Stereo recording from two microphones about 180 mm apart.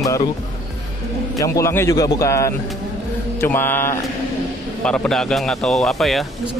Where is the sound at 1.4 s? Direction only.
15° left (ahead or behind).